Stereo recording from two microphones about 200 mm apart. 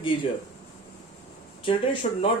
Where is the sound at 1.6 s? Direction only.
25° left (ahead or behind).